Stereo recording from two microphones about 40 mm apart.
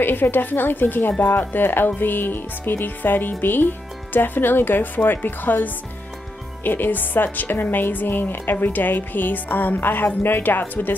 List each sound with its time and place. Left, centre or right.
0.0 s a woman's voice: left